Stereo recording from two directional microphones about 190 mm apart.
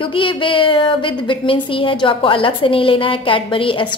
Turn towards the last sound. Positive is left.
turn(degrees=25)  # may be behind; listen again after turning